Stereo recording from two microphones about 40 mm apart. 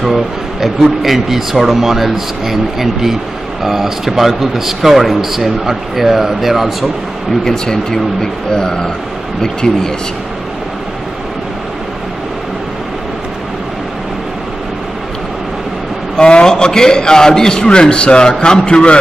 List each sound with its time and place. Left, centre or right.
0.0 s a man's voice: centre
7.4 s speech: centre
16.2 s a man's voice: left